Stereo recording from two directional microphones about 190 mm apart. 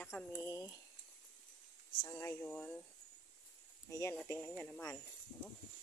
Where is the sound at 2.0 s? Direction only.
15° left (ahead or behind).